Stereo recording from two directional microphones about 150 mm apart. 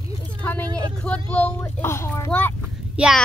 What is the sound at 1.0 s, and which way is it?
A woman's voice, 10° left (ahead or behind).